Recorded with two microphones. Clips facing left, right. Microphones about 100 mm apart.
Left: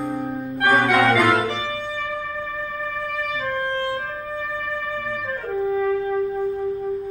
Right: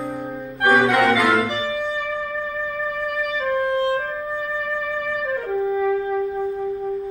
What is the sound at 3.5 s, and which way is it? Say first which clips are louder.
Music: right 6 dB; 5° right (ahead or behind).